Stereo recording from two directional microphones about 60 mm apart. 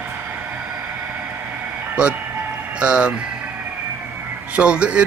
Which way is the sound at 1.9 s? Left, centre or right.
Centre.